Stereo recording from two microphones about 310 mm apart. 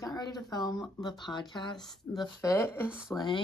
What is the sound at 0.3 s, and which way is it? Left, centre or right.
Speech, centre.